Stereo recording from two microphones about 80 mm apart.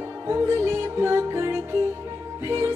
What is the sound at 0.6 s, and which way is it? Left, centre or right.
Music, right.